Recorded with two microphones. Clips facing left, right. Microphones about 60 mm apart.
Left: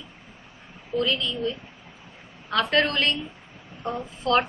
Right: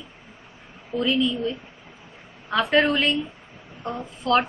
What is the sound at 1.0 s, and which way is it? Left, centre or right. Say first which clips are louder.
Speech: right 3 dB; centre.